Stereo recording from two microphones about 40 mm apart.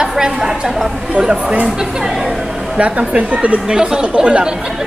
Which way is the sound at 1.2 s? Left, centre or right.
Right.